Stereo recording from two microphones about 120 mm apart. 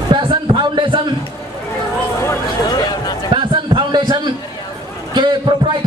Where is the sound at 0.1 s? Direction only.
45° right (ahead or behind).